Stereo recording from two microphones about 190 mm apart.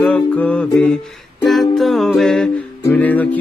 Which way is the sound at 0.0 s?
5° left (ahead or behind).